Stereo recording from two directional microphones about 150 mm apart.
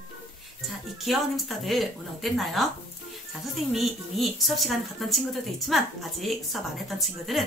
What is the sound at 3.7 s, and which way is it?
A woman's voice, centre (ahead or behind).